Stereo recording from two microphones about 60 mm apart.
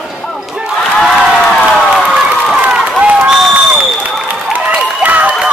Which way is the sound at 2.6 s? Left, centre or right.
Centre.